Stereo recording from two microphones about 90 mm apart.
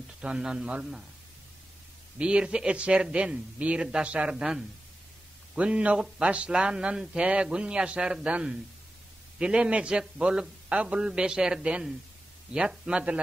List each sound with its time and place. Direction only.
0.2 s speech: 10° right (ahead or behind)
2.1 s speech: 10° right (ahead or behind)